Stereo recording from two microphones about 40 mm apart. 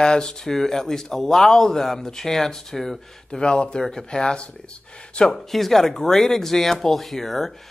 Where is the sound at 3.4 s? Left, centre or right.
Left.